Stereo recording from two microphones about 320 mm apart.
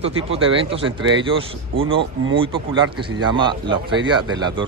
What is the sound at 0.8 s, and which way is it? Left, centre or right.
A man's voice, centre.